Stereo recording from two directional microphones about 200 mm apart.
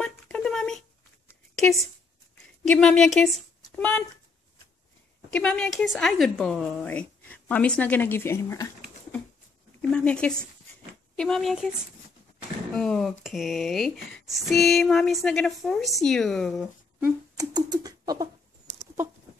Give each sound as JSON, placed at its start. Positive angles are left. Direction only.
{"t": 0.0, "sound": "a sound", "side_deg": 5}
{"t": 1.5, "sound": "a woman's voice", "side_deg": 0}
{"t": 5.3, "sound": "speech", "side_deg": 5}
{"t": 12.7, "sound": "speech", "side_deg": 0}
{"t": 17.0, "sound": "speech", "side_deg": -20}